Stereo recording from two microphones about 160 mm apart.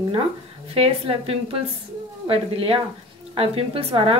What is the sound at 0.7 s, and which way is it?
A woman's voice, 35° right (ahead or behind).